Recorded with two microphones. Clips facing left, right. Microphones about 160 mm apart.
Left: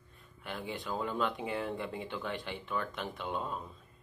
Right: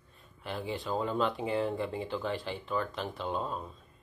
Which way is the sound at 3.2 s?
25° right (ahead or behind).